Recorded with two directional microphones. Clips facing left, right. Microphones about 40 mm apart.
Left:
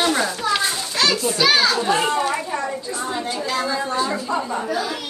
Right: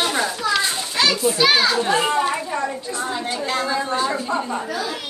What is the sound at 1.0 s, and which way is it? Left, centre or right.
A child's voice, centre.